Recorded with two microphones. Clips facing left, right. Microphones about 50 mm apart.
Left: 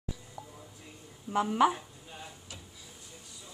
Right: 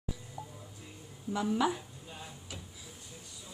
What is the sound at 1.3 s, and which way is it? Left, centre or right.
Speech, left.